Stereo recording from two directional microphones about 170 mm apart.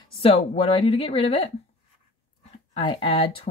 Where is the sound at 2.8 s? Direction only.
30° left (ahead or behind).